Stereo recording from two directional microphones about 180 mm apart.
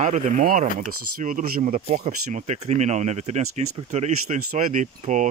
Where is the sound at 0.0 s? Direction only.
45° right (ahead or behind).